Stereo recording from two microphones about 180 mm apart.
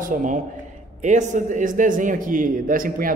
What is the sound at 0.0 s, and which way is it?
A man's voice, 45° right (ahead or behind).